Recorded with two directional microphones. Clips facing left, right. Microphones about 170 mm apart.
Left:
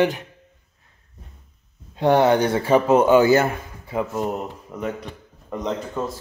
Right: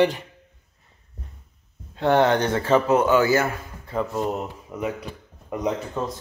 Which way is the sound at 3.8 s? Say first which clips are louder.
Left 1 dB; 10° left (ahead or behind).